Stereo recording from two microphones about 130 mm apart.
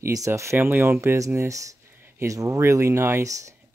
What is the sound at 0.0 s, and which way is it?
Speech, 25° right (ahead or behind).